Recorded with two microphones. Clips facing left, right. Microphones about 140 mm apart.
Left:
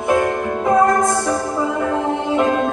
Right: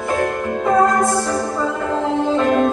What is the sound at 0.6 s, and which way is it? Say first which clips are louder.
Music: even; 20° left (ahead or behind).